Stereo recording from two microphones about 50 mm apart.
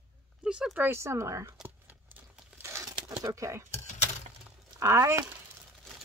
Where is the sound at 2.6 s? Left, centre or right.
Right.